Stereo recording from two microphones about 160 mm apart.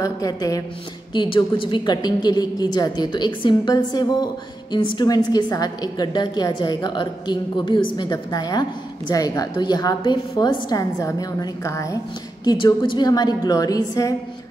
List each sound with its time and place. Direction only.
0.0 s a woman's voice: 20° left (ahead or behind)